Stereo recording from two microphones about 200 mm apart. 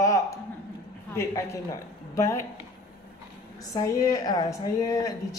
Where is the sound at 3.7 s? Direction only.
15° left (ahead or behind).